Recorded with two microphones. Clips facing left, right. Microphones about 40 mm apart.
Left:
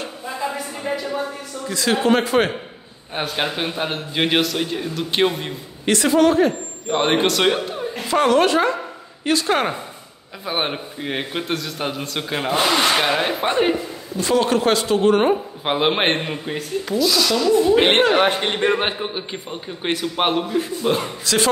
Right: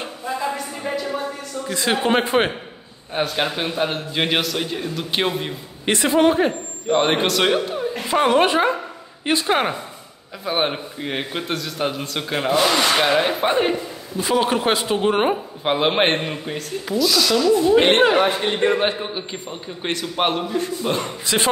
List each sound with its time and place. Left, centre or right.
0.2 s a sound: centre
1.7 s speech: right
3.2 s a man's voice: centre
5.9 s speech: right
6.9 s a man's voice: centre
8.1 s speech: centre
10.4 s a man's voice: centre
14.1 s speech: centre
15.6 s a man's voice: centre
18.1 s a man's voice: left
18.6 s a man's voice: left
18.9 s a man's voice: centre